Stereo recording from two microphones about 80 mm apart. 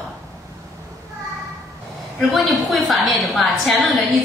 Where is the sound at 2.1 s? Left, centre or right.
Centre.